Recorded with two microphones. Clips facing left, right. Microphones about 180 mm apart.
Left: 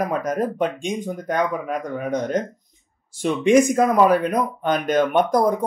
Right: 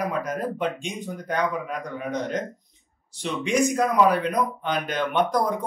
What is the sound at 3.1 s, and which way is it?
Speech, 50° left (ahead or behind).